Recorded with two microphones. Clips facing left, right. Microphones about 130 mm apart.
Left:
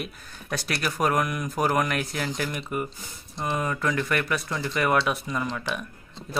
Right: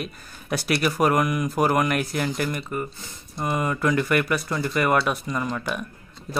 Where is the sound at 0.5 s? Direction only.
5° right (ahead or behind).